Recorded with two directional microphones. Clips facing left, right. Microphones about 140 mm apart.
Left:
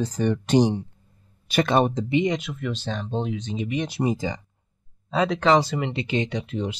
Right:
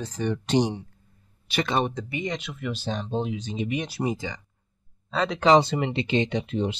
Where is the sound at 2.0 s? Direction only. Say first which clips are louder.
Left 9 dB; 25° left (ahead or behind).